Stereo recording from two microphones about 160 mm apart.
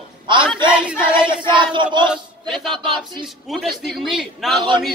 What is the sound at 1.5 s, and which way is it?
Chant, 30° right (ahead or behind).